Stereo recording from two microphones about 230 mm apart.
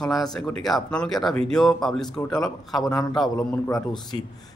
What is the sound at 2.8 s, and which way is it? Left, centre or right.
Speech, centre.